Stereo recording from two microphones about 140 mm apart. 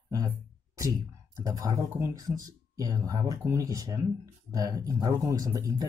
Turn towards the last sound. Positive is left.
turn(degrees=-25)  # may be behind; listen again after turning